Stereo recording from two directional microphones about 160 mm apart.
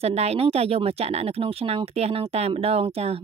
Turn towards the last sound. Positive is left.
turn(degrees=-40)  # may be behind; listen again after turning